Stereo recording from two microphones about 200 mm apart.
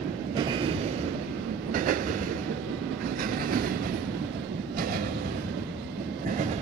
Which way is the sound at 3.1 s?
45° right (ahead or behind).